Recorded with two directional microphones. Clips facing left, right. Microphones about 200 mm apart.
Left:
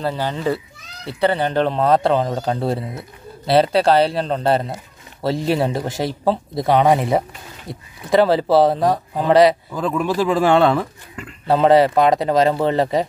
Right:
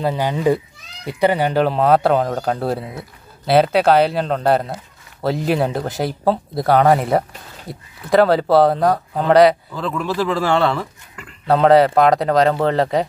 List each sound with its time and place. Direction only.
0.0 s speech: 15° right (ahead or behind)
9.8 s a man's voice: 15° left (ahead or behind)
11.4 s speech: centre (ahead or behind)